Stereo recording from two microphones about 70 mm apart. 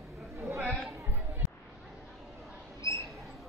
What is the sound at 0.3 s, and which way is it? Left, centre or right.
Chatter, right.